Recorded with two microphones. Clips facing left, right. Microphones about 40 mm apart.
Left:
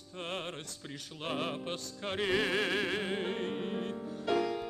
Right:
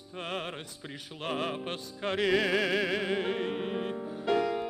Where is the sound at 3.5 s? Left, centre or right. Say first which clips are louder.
Right 3 dB; centre.